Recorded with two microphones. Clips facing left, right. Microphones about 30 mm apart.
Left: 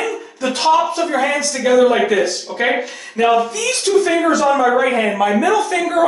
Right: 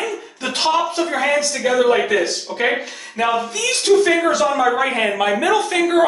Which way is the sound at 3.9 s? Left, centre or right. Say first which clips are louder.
Right 1 dB; right.